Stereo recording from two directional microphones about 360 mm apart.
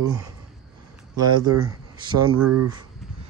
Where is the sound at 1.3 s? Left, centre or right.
Centre.